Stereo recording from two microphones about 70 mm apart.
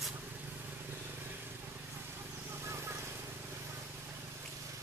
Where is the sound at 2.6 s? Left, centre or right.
Right.